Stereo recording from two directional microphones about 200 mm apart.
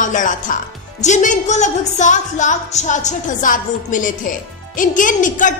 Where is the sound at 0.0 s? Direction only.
40° left (ahead or behind).